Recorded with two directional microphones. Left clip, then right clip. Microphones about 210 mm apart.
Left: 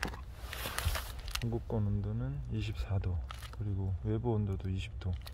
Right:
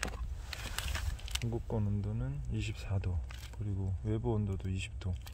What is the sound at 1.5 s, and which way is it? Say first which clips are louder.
Speech: left 1 dB; centre (ahead or behind).